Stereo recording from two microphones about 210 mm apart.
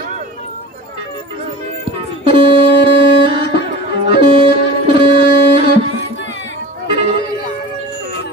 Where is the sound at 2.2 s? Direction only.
25° right (ahead or behind).